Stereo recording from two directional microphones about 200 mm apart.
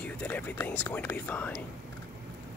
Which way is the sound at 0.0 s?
10° left (ahead or behind).